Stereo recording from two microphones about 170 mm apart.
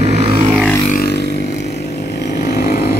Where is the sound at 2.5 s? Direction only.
60° left (ahead or behind).